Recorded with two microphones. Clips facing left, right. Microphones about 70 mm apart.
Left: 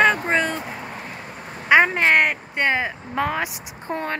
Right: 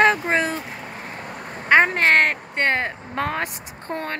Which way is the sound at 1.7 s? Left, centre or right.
Centre.